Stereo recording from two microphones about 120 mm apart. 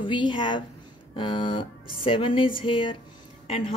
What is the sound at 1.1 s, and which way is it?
Music, 40° left (ahead or behind).